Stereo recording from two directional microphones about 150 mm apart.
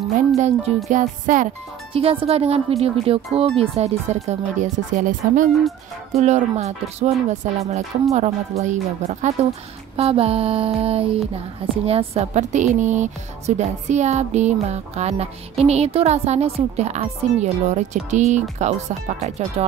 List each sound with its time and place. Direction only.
0.4 s a woman's voice: 45° right (ahead or behind)
0.8 s music: 60° right (ahead or behind)
2.0 s a sound: 40° right (ahead or behind)
3.3 s a woman's voice: 40° right (ahead or behind); by 5.5 s 60° right (ahead or behind)
6.1 s a woman's voice: 45° right (ahead or behind)
9.9 s a sound: 40° right (ahead or behind)
11.8 s a woman's voice: 40° right (ahead or behind)